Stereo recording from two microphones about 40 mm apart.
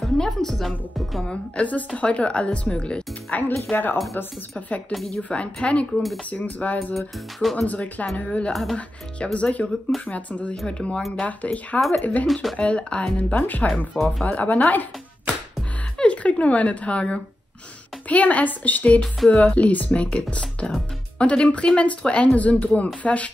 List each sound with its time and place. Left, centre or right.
0.2 s music: centre
0.6 s a woman's voice: centre
1.6 s speech: left
3.3 s speech: left
3.7 s speech: left
4.6 s speech: left
6.3 s speech: left
6.9 s a woman's voice: centre
7.5 s speech: left
12.5 s speech: left
13.4 s speech: left
13.9 s a woman's voice: centre
14.2 s speech: left
16.0 s speech: left